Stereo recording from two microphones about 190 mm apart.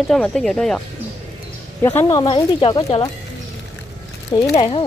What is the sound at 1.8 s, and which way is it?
Speech, 15° left (ahead or behind).